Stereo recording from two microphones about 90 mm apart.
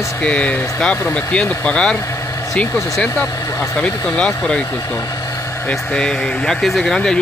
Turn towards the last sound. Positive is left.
turn(degrees=5)  # may be behind; listen again after turning